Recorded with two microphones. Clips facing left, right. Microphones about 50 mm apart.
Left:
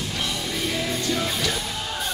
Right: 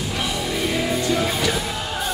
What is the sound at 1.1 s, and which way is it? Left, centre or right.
Music, centre.